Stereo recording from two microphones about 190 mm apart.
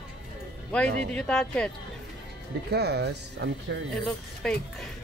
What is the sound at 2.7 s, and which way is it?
Speech, 60° right (ahead or behind).